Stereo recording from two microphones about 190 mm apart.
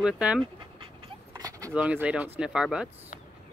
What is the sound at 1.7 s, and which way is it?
Speech, 5° right (ahead or behind).